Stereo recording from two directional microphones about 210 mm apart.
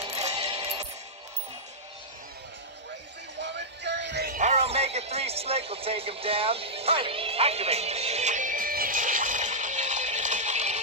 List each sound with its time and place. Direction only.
0.1 s coin: 30° right (ahead or behind)
3.3 s music: 55° right (ahead or behind)
4.4 s music: 30° right (ahead or behind)